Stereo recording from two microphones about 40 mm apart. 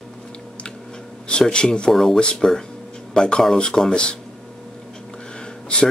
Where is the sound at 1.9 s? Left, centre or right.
Centre.